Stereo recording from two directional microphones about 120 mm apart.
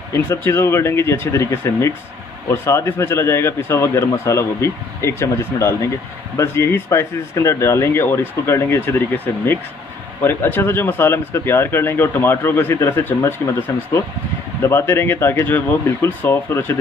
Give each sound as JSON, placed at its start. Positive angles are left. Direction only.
{"t": 0.1, "sound": "speech", "side_deg": 20}